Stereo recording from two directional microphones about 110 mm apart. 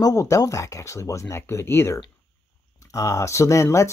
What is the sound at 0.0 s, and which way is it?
Speech, 30° left (ahead or behind).